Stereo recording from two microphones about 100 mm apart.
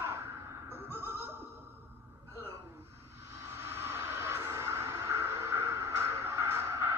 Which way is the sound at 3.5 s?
25° right (ahead or behind).